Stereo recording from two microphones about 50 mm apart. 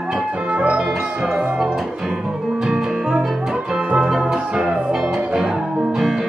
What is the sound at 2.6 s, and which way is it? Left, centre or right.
Music, centre.